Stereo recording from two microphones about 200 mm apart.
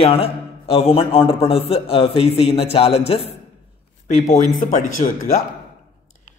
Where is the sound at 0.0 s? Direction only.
30° left (ahead or behind).